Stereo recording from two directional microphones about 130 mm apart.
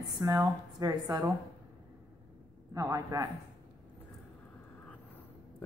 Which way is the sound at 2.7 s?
25° right (ahead or behind).